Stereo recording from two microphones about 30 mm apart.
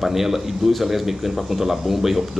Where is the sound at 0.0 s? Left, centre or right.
Centre.